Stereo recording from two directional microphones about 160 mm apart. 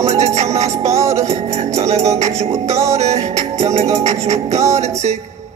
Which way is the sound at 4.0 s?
45° right (ahead or behind).